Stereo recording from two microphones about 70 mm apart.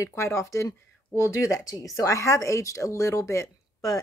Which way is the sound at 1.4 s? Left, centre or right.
Left.